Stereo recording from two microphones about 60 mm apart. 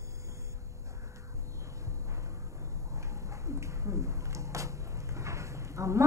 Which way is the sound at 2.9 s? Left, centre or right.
Right.